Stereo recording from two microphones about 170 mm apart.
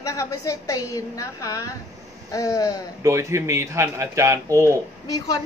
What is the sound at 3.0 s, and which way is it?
A man's voice, 15° right (ahead or behind).